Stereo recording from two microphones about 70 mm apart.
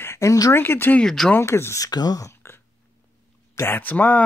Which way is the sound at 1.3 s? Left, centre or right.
Left.